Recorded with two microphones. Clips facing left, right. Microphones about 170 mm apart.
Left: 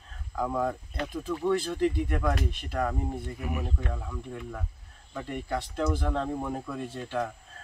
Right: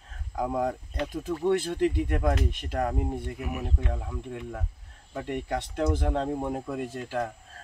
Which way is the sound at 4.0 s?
35° right (ahead or behind).